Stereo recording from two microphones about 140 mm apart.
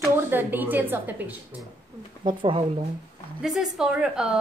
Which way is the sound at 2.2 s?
40° right (ahead or behind).